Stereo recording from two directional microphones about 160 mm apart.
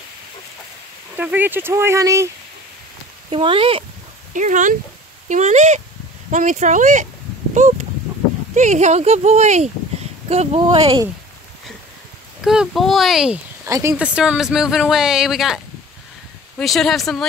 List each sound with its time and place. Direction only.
1.1 s speech: 10° right (ahead or behind)
3.3 s speech: 35° right (ahead or behind)
4.3 s speech: 50° right (ahead or behind); by 11.1 s 30° right (ahead or behind)
12.4 s speech: centre (ahead or behind)
13.7 s speech: 20° right (ahead or behind)
13.9 s speech: 5° right (ahead or behind)